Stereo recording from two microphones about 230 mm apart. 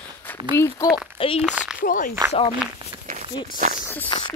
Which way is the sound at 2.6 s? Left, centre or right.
Centre.